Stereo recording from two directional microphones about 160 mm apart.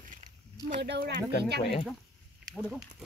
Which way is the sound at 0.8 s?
90° right.